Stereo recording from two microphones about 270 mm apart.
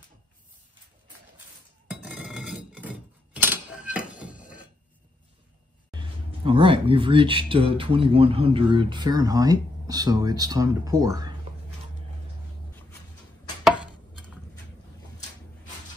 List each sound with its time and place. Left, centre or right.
1.9 s dishes: centre
3.3 s a sound: centre
5.9 s speech: centre